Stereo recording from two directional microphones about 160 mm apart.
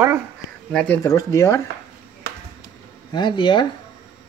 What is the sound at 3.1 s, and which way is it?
Speech, 30° left (ahead or behind).